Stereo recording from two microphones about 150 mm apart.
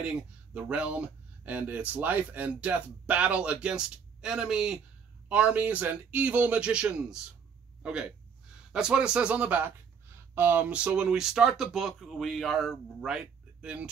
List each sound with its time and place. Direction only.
0.7 s speech: 10° right (ahead or behind)